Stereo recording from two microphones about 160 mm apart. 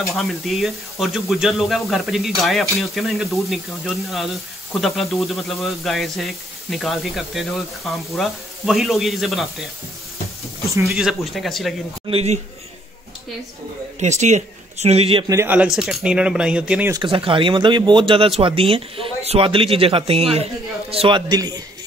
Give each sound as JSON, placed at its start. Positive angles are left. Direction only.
{"t": 0.0, "sound": "speech", "side_deg": 0}
{"t": 10.9, "sound": "speech", "side_deg": 0}
{"t": 12.1, "sound": "speech", "side_deg": -40}
{"t": 13.9, "sound": "a man's voice", "side_deg": -45}
{"t": 15.2, "sound": "speech", "side_deg": -15}
{"t": 16.9, "sound": "a man's voice", "side_deg": -30}